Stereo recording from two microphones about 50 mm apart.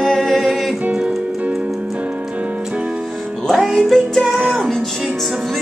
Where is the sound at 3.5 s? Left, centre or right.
Centre.